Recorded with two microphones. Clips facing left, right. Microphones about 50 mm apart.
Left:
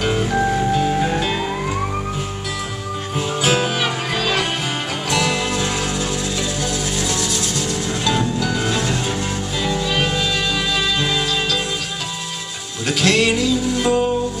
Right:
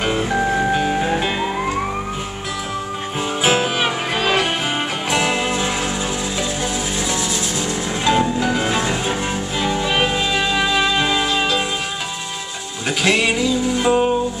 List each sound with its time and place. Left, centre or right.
0.2 s music: centre
3.4 s music: right
12.8 s music: centre